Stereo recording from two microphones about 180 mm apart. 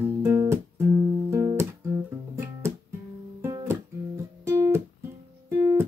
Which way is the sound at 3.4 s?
15° right (ahead or behind).